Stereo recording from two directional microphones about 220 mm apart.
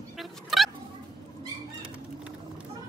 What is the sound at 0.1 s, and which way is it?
Fowl, centre (ahead or behind).